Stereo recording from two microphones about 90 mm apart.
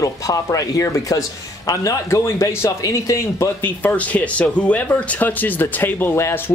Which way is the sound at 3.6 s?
20° left (ahead or behind).